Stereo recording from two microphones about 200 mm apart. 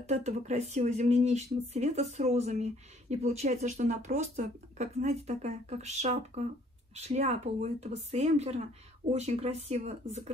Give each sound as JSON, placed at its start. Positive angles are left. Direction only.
{"t": 0.0, "sound": "speech", "side_deg": -35}